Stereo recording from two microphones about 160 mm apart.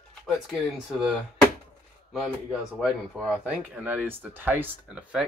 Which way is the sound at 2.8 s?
5° right (ahead or behind).